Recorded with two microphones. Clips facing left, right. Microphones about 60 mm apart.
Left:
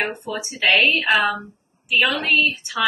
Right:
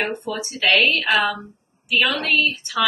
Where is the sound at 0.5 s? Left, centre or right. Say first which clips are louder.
Left 1 dB; centre.